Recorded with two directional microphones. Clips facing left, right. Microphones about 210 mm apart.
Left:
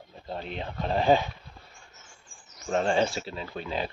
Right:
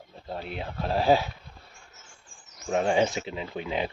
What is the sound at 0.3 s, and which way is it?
Speech, 5° right (ahead or behind).